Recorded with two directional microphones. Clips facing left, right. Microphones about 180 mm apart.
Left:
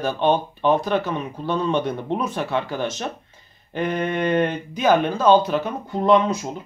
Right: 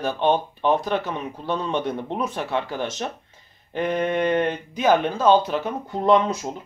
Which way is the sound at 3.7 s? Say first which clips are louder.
Right 1 dB; 25° right (ahead or behind).